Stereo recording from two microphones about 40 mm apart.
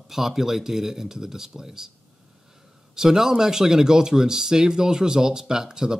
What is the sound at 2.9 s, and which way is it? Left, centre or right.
Speech, centre.